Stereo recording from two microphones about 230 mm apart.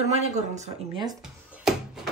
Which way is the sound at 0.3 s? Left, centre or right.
Right.